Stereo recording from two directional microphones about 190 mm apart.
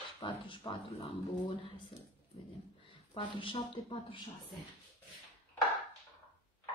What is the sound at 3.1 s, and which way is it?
Speech, 25° left (ahead or behind).